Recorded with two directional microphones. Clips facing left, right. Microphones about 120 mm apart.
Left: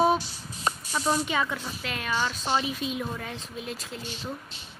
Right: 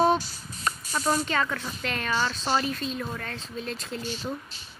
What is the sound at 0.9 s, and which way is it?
Speech, 5° left (ahead or behind).